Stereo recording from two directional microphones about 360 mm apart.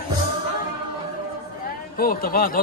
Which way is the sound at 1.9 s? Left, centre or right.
Left.